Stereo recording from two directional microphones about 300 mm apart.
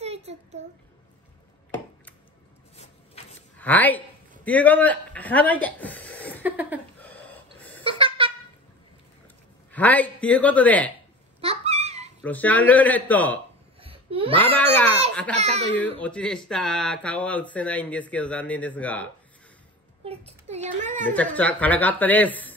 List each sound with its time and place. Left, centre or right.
0.0 s a sound: right
3.5 s speech: centre
6.4 s a sound: centre
7.0 s gasp: centre
7.8 s a sound: centre
9.7 s speech: centre
11.4 s a sound: right
12.2 s speech: centre
13.7 s babbling: centre
14.3 s speech: centre
20.1 s a child's voice: right
21.0 s speech: centre